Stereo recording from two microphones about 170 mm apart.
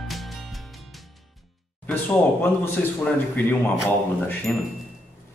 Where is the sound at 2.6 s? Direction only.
10° left (ahead or behind).